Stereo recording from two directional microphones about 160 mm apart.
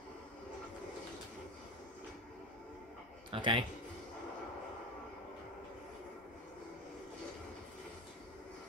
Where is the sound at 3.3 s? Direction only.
30° right (ahead or behind).